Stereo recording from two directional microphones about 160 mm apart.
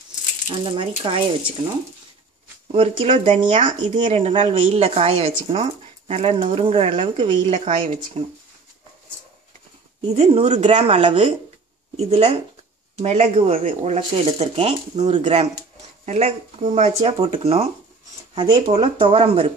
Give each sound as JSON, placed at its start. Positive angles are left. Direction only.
{"t": 0.5, "sound": "speech", "side_deg": -35}
{"t": 2.7, "sound": "speech", "side_deg": -35}
{"t": 10.1, "sound": "speech", "side_deg": -40}